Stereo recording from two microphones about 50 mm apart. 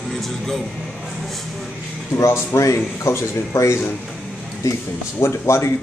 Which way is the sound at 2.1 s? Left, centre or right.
Left.